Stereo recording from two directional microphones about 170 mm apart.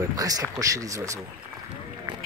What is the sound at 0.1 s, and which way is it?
Speech, 20° right (ahead or behind).